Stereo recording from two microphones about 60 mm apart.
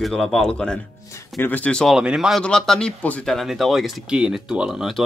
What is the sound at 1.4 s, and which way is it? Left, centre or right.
Speech, left.